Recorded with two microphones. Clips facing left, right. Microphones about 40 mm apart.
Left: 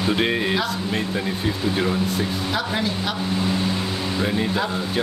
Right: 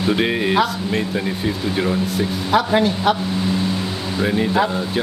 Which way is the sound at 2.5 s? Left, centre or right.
Right.